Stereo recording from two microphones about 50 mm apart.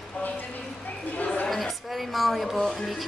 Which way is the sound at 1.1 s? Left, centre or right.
Left.